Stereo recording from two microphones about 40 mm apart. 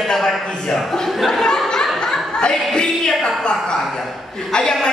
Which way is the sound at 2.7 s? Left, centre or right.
Left.